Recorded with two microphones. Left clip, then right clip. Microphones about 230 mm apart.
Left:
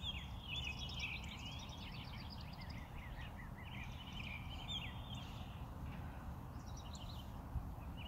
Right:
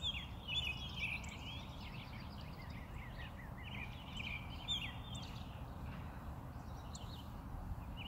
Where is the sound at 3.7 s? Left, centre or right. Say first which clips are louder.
Right 3 dB; right.